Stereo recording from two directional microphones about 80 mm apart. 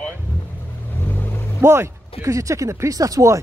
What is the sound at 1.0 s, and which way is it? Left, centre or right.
Vehicle, left.